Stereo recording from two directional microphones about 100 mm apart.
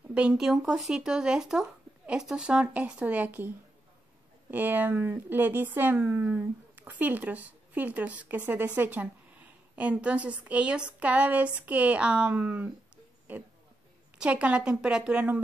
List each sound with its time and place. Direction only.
0.1 s speech: 10° right (ahead or behind)